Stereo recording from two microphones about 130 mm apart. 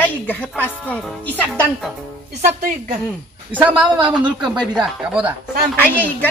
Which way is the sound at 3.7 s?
35° right (ahead or behind).